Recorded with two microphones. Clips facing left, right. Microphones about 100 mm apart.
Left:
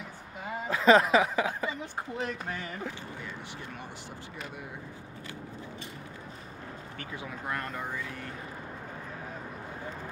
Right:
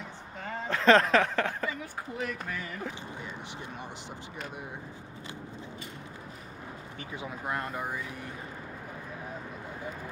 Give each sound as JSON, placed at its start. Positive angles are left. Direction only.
{"t": 0.5, "sound": "a sound", "side_deg": 10}
{"t": 1.7, "sound": "speech", "side_deg": 30}
{"t": 7.0, "sound": "speech", "side_deg": -20}